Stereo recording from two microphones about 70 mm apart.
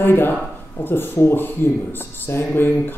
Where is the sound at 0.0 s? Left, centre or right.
Left.